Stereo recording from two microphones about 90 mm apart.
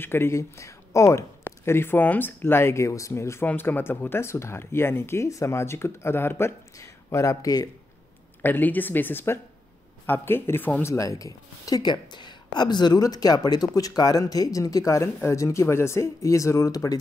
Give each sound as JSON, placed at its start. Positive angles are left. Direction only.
{"t": 0.0, "sound": "speech", "side_deg": 25}
{"t": 8.4, "sound": "speech", "side_deg": 20}
{"t": 10.8, "sound": "speech", "side_deg": 35}